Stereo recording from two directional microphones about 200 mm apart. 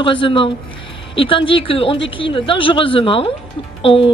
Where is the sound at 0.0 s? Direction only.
25° left (ahead or behind).